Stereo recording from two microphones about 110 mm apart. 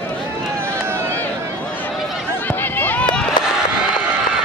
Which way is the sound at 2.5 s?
20° left (ahead or behind).